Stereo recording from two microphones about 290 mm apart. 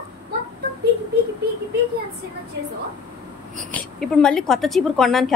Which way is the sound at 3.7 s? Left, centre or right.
Centre.